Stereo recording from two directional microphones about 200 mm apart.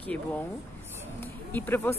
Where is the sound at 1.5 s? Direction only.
10° left (ahead or behind).